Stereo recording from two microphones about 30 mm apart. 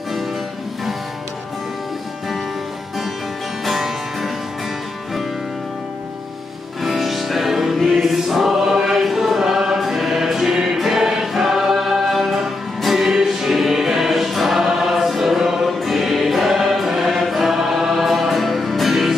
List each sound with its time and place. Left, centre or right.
3.6 s music: centre
6.8 s music: centre
7.9 s choir: centre
10.2 s music: centre